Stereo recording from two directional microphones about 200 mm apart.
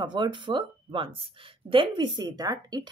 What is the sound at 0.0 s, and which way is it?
A woman's voice, 25° right (ahead or behind).